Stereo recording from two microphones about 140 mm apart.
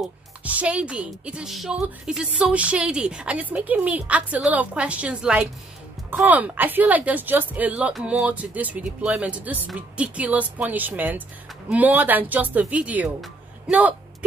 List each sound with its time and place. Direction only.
0.0 s a woman's voice: 10° right (ahead or behind)
13.2 s music: 10° right (ahead or behind)